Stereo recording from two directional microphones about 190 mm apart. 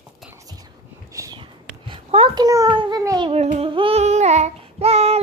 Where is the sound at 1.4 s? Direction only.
30° right (ahead or behind).